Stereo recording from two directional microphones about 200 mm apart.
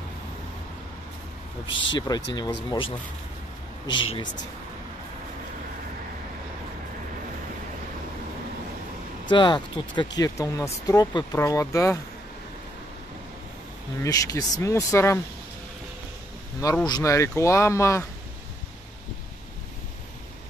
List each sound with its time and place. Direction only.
1.7 s speech: 65° left (ahead or behind)
2.0 s speech: 20° left (ahead or behind)
9.3 s speech: 25° left (ahead or behind)
14.0 s speech: 15° left (ahead or behind)
16.6 s speech: 20° left (ahead or behind)